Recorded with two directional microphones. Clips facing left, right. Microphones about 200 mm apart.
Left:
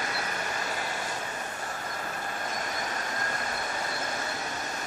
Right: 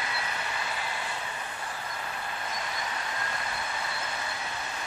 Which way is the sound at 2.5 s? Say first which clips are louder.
Left 2 dB; 45° left (ahead or behind).